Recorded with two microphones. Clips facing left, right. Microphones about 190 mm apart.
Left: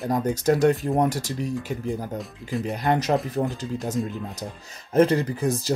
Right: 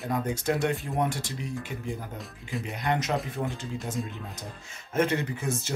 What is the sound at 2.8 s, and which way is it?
Speech, 35° left (ahead or behind).